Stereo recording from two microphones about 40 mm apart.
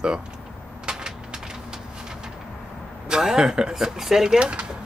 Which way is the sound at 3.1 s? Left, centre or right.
Centre.